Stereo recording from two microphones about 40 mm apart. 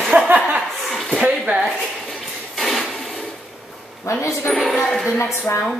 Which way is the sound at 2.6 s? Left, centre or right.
Centre.